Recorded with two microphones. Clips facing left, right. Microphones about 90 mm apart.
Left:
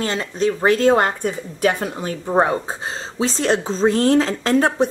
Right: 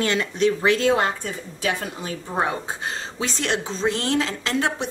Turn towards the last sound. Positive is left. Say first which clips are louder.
# left 7 dB
turn(degrees=40)  # may be behind; listen again after turning